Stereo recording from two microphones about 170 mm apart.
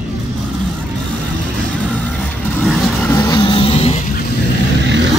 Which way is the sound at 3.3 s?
30° left (ahead or behind).